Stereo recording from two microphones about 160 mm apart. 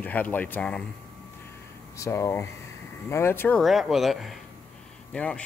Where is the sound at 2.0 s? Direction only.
15° left (ahead or behind).